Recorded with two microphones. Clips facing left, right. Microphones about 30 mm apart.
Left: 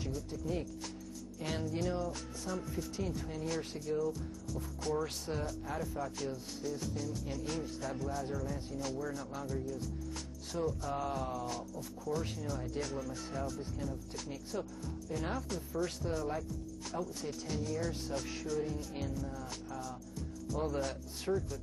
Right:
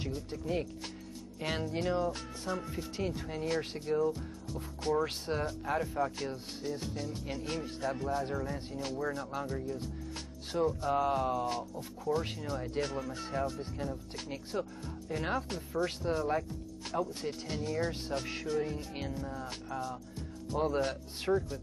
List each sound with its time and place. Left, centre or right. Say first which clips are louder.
0.0 s speech: right 2 dB; right